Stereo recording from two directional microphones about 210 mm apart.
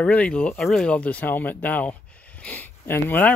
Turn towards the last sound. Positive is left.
turn(degrees=10)  # may be behind; listen again after turning